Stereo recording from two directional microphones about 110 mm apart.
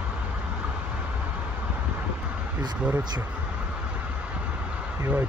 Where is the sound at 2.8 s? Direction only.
10° right (ahead or behind).